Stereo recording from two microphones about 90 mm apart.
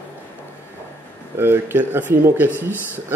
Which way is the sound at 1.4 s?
25° right (ahead or behind).